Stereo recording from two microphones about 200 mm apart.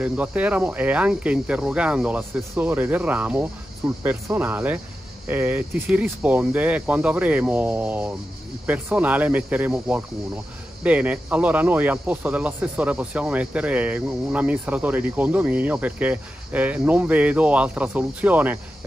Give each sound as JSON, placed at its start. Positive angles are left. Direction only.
{"t": 0.0, "sound": "speech", "side_deg": -5}